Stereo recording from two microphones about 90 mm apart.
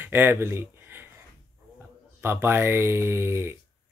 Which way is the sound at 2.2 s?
25° right (ahead or behind).